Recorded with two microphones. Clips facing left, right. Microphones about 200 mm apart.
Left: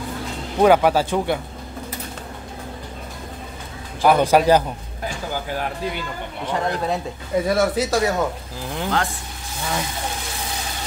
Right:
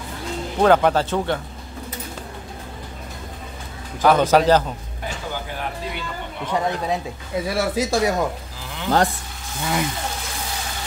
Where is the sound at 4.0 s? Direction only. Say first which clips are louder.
Even; 10° left (ahead or behind).